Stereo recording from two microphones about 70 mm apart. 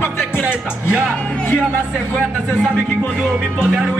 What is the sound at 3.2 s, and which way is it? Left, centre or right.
Speech, centre.